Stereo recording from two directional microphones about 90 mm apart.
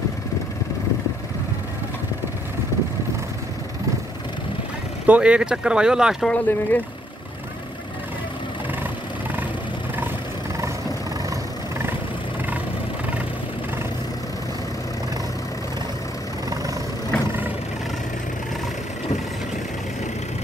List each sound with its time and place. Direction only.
5.0 s speech: 15° right (ahead or behind)
6.2 s speech: 15° left (ahead or behind)